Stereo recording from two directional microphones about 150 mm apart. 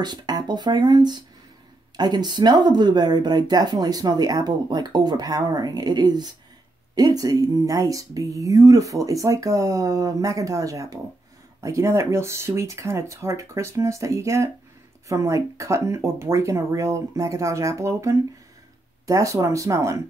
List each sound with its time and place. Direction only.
0.0 s speech: 30° right (ahead or behind)